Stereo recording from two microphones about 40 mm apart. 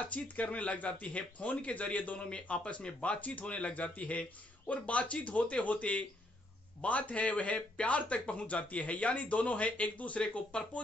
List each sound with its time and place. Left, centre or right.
0.0 s a man's voice: left
2.1 s a man's voice: left